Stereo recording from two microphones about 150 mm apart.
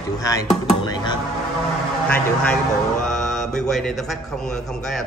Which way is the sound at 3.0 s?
Centre (ahead or behind).